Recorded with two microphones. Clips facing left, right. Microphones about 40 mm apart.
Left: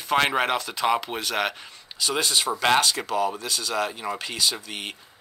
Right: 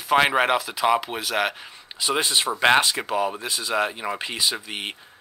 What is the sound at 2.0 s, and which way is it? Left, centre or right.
Speech, centre.